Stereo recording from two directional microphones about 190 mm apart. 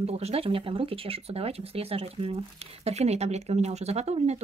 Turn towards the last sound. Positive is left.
turn(degrees=-35)  # may be behind; listen again after turning